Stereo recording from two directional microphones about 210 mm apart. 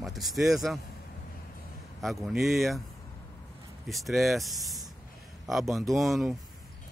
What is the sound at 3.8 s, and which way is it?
Speech, centre (ahead or behind).